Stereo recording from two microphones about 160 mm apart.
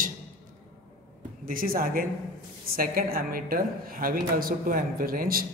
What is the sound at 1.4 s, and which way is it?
A man's voice, 60° right (ahead or behind).